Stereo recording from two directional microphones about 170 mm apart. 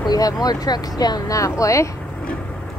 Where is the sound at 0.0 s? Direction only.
25° left (ahead or behind).